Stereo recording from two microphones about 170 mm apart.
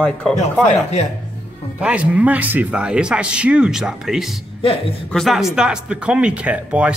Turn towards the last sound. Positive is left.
turn(degrees=-5)  # may be behind; listen again after turning